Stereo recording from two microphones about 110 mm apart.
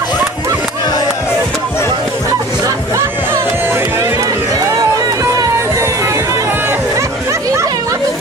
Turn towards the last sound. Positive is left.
turn(degrees=-20)  # may be behind; listen again after turning